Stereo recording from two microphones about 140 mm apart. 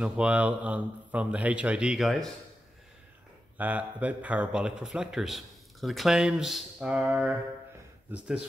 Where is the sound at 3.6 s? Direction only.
10° right (ahead or behind).